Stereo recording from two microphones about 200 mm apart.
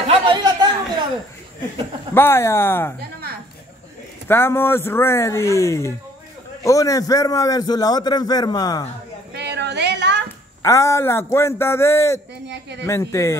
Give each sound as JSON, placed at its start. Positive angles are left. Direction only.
{"t": 0.0, "sound": "a sound", "side_deg": -25}
{"t": 2.1, "sound": "speech", "side_deg": 10}
{"t": 4.3, "sound": "a man's voice", "side_deg": 10}
{"t": 9.3, "sound": "a sound", "side_deg": -55}
{"t": 10.6, "sound": "speech", "side_deg": 15}
{"t": 12.4, "sound": "speech", "side_deg": -60}
{"t": 12.8, "sound": "speech", "side_deg": 15}